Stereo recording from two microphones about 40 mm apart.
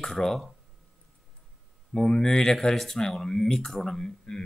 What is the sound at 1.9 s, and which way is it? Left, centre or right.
Speech, centre.